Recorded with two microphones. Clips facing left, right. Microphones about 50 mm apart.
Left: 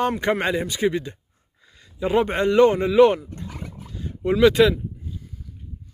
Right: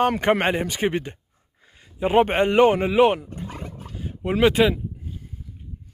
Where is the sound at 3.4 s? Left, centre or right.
Right.